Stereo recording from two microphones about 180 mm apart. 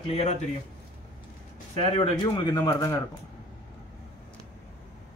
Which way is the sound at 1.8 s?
30° left (ahead or behind).